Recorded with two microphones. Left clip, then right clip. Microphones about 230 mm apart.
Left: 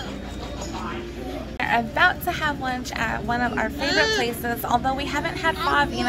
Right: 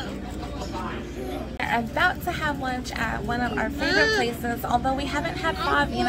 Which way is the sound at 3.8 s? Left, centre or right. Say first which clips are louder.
Even; right.